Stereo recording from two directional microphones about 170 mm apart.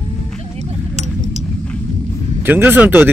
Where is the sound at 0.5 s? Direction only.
40° right (ahead or behind).